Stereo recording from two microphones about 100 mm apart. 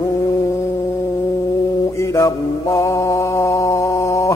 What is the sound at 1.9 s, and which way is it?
Mantra, 30° left (ahead or behind).